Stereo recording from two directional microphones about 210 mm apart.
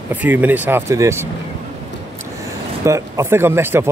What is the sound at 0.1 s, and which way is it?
Speech, 10° right (ahead or behind).